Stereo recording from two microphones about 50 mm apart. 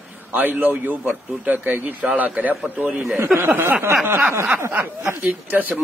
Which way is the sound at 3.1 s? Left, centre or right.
Right.